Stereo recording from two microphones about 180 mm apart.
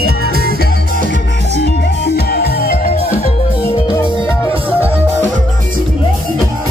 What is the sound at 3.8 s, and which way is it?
Music, 20° left (ahead or behind).